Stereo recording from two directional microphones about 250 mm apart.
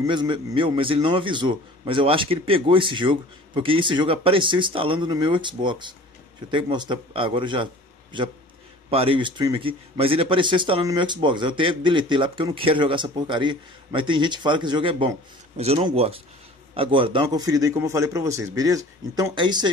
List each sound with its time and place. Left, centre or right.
0.0 s a man's voice: centre